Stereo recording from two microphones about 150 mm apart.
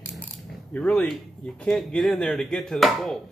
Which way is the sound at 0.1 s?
Centre (ahead or behind).